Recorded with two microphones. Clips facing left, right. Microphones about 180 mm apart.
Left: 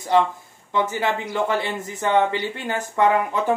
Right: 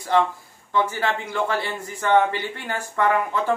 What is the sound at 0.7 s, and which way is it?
Speech, 15° left (ahead or behind).